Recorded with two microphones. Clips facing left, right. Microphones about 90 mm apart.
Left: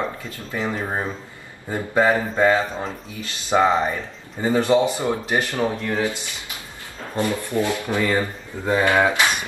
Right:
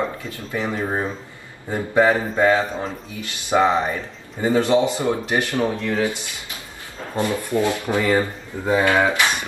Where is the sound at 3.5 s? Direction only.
20° right (ahead or behind).